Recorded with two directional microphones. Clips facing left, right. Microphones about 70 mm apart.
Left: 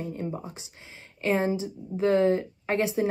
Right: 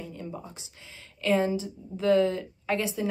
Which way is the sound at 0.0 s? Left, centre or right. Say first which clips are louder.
Left 5 dB; left.